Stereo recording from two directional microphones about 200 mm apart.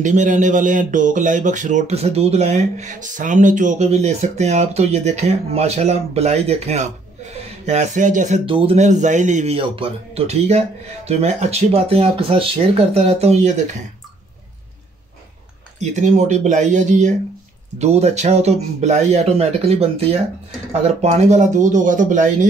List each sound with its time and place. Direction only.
0.0 s speech: 40° right (ahead or behind)
8.5 s speech: 25° right (ahead or behind)
15.8 s speech: 35° right (ahead or behind)